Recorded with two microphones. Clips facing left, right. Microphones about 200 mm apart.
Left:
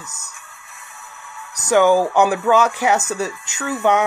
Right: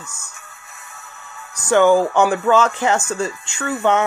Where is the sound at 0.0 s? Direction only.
40° left (ahead or behind).